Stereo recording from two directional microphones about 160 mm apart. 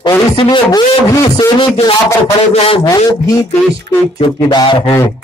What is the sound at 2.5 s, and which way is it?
Speech, 40° left (ahead or behind).